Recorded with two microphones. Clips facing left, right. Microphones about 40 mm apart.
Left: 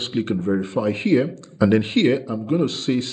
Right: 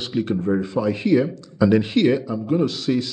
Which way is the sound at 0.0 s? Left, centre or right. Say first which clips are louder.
Even; left.